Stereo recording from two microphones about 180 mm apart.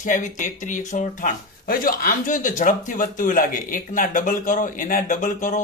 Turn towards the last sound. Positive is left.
turn(degrees=45)  # may be behind; listen again after turning